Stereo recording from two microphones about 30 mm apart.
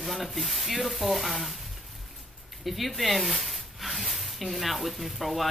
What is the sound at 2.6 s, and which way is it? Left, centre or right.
Speech, centre.